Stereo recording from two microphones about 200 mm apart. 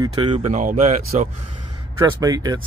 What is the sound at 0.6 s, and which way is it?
Speech, 40° right (ahead or behind).